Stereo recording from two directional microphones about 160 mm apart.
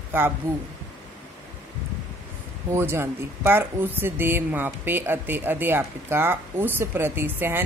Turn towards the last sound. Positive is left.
turn(degrees=-15)  # may be behind; listen again after turning